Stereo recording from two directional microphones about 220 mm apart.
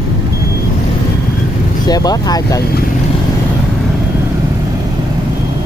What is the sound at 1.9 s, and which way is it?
Speech, 15° left (ahead or behind).